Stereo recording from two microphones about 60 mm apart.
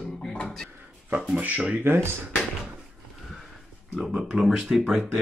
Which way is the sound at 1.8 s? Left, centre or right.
Right.